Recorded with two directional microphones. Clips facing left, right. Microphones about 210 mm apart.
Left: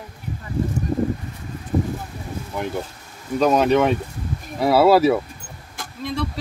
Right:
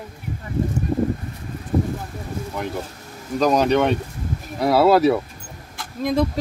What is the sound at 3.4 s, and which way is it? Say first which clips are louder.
Speech: left 1 dB; centre (ahead or behind).